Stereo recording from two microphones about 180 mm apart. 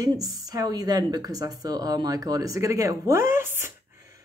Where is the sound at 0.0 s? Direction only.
20° right (ahead or behind).